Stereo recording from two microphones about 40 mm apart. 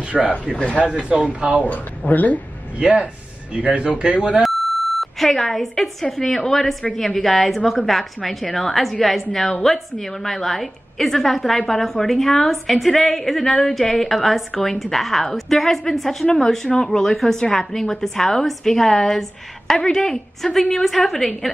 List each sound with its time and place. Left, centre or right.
0.1 s a woman's voice: centre
1.0 s speech: right
1.6 s speech: left
3.5 s speech: right
5.2 s a woman's voice: centre